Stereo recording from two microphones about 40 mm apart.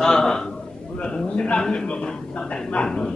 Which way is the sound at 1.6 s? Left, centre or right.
Centre.